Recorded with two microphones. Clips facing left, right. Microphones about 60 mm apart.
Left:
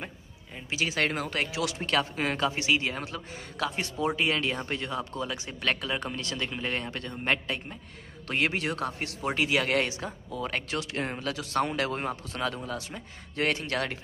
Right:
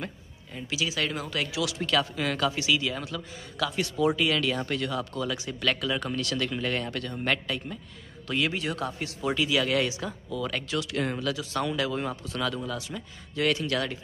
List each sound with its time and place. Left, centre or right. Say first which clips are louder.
0.7 s speech: left 2 dB; left
8.3 s speech: even; left